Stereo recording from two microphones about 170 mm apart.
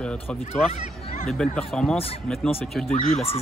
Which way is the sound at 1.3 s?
5° left (ahead or behind).